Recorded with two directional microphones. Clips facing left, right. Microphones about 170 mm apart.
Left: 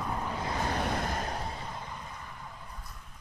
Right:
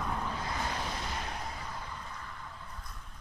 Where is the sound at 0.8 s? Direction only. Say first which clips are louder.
Left 6 dB; 55° left (ahead or behind).